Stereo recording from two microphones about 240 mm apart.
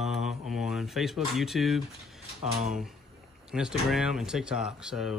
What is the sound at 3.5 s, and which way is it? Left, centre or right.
Speech, centre.